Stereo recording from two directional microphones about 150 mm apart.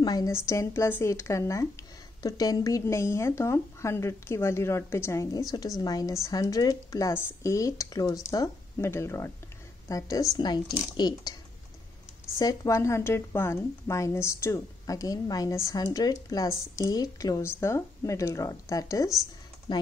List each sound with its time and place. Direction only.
0.0 s speech: 25° left (ahead or behind)
12.4 s speech: 20° left (ahead or behind)